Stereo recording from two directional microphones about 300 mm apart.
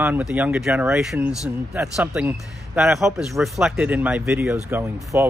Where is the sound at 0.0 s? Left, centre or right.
Centre.